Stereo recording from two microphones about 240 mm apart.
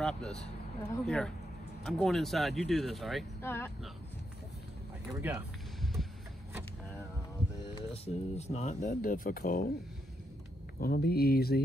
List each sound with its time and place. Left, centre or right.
0.0 s speech: centre
5.2 s music: centre
7.7 s speech: left
10.8 s speech: left